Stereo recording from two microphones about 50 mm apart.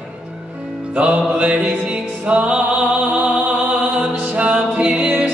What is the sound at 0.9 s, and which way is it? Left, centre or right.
Music, right.